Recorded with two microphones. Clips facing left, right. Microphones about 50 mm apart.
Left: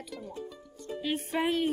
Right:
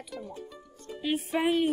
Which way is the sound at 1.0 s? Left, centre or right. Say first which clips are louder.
Right 3 dB; centre.